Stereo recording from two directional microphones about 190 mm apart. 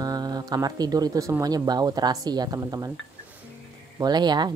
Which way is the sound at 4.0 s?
20° right (ahead or behind).